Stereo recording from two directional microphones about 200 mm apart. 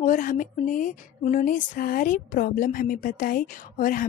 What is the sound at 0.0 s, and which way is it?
Speech, 40° left (ahead or behind).